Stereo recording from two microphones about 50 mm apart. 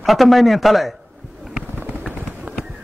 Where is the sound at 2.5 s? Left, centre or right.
Right.